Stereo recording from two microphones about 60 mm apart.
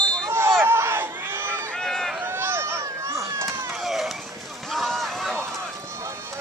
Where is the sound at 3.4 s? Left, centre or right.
Right.